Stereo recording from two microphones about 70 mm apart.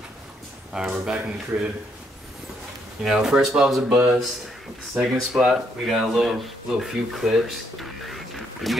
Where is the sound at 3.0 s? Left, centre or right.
Centre.